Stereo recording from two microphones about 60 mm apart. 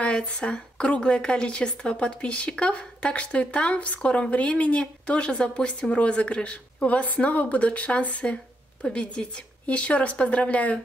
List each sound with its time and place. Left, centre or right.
0.0 s a woman's voice: left